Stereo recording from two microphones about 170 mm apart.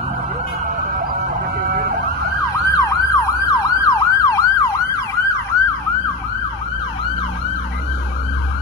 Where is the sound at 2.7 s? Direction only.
20° left (ahead or behind).